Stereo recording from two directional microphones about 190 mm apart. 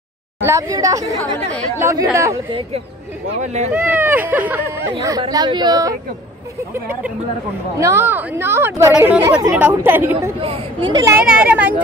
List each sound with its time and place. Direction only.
0.4 s speech: 15° right (ahead or behind)
3.7 s speech: 10° right (ahead or behind)
4.9 s speech: 25° right (ahead or behind)
10.4 s speech: 25° right (ahead or behind)
11.2 s speech: 5° right (ahead or behind)